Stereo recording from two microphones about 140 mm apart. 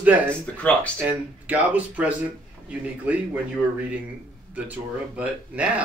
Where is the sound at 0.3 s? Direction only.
10° left (ahead or behind).